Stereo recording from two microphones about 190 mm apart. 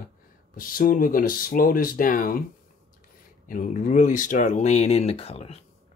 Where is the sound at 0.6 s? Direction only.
50° left (ahead or behind).